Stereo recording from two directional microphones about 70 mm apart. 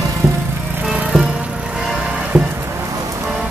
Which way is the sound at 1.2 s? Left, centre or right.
Centre.